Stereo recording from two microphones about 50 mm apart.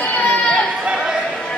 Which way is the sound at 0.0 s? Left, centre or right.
Left.